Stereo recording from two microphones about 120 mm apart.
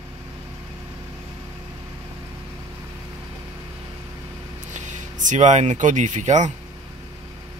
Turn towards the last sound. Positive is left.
turn(degrees=-80)